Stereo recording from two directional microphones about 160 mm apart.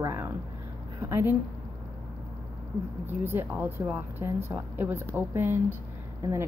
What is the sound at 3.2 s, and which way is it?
A woman's voice, 15° right (ahead or behind).